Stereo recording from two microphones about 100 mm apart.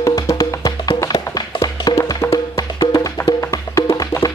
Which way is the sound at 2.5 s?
30° left (ahead or behind).